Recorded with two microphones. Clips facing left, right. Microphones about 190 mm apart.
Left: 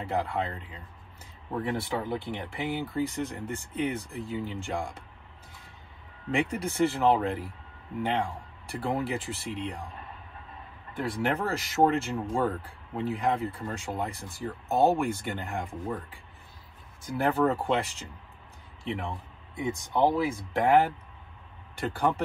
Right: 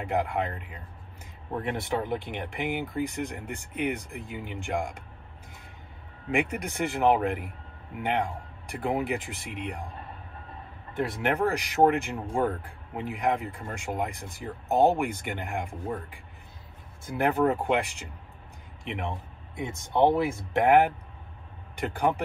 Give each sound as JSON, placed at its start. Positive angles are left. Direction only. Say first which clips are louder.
{"t": 0.0, "sound": "speech", "louder": "right 2 dB", "side_deg": -15}
{"t": 6.3, "sound": "speech", "louder": "even", "side_deg": -15}
{"t": 8.6, "sound": "speech", "louder": "right 2 dB", "side_deg": -15}
{"t": 11.0, "sound": "speech", "louder": "right 2 dB", "side_deg": -20}